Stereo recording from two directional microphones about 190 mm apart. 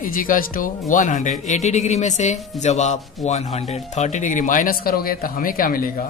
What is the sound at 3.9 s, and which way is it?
Speech, 40° left (ahead or behind).